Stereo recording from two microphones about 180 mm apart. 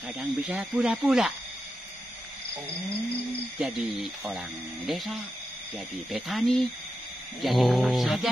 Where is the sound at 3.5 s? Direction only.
Centre (ahead or behind).